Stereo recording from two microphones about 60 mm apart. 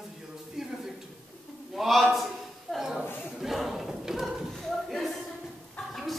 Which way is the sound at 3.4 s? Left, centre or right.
Centre.